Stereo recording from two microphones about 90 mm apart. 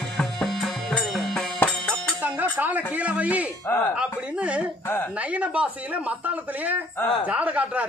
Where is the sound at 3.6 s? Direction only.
25° left (ahead or behind).